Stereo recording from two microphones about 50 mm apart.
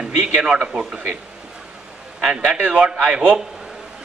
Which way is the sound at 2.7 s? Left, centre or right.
Centre.